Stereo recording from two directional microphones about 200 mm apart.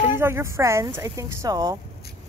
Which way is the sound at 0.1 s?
10° right (ahead or behind).